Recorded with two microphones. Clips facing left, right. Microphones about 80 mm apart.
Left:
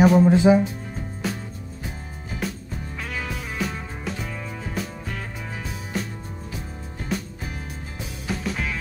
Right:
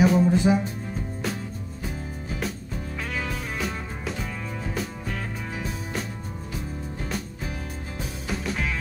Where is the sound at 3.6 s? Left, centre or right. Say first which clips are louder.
Left 3 dB; centre.